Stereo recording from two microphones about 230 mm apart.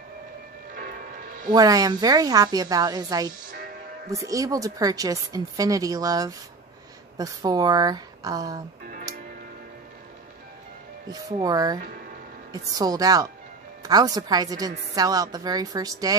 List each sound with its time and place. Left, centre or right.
0.7 s music: right
1.5 s speech: centre
11.1 s speech: centre